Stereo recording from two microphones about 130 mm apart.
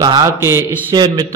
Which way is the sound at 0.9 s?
35° right (ahead or behind).